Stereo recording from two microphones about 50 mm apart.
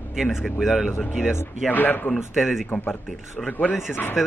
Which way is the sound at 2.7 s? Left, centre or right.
Left.